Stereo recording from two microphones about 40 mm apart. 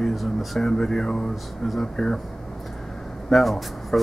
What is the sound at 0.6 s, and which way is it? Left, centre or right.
Speech, centre.